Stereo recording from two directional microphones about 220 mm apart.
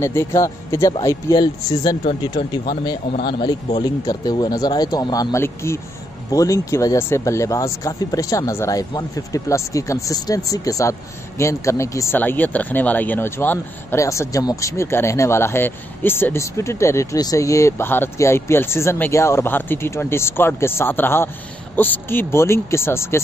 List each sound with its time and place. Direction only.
0.0 s speech: 10° left (ahead or behind)